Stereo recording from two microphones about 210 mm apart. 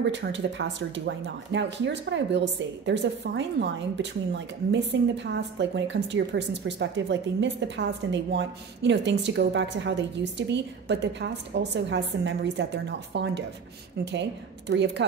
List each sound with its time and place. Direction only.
0.0 s speech: 55° right (ahead or behind)
14.7 s speech: 55° right (ahead or behind)